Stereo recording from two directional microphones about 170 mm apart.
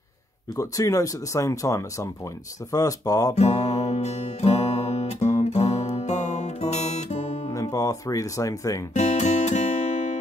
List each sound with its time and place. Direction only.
0.6 s speech: 20° left (ahead or behind)
3.3 s music: 40° left (ahead or behind)
7.5 s speech: 20° left (ahead or behind)
8.9 s guitar: 45° left (ahead or behind)